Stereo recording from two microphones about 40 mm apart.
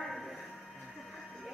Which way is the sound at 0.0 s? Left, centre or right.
Centre.